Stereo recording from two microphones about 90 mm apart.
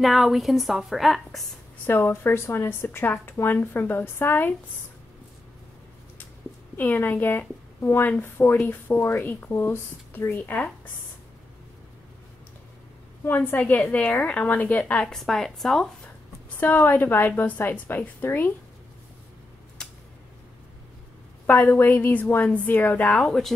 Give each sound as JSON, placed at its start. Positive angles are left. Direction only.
{"t": 0.0, "sound": "a woman's voice", "side_deg": 0}
{"t": 1.9, "sound": "speech", "side_deg": 25}
{"t": 6.8, "sound": "speech", "side_deg": 25}
{"t": 13.2, "sound": "a woman's voice", "side_deg": 25}
{"t": 15.1, "sound": "a woman's voice", "side_deg": 5}
{"t": 16.5, "sound": "speech", "side_deg": 20}
{"t": 21.5, "sound": "speech", "side_deg": 20}
{"t": 23.0, "sound": "a woman's voice", "side_deg": 5}